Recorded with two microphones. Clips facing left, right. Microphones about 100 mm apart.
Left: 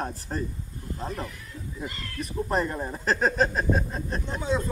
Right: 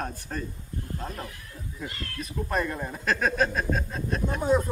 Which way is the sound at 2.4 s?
25° left (ahead or behind).